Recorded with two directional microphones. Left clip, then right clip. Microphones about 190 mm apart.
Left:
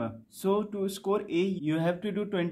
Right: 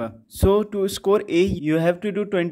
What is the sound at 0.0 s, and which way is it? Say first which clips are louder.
Speech: right 10 dB; 40° right (ahead or behind).